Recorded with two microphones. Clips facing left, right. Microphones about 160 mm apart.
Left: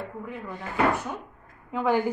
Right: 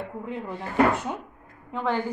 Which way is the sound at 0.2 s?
25° right (ahead or behind).